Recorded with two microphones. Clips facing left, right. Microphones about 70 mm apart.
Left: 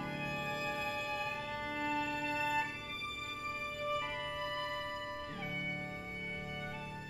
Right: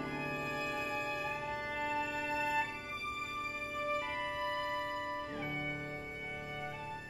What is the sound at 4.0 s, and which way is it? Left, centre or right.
Music, centre.